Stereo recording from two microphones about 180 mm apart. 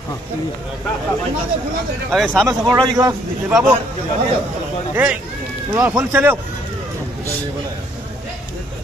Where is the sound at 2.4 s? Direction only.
20° right (ahead or behind).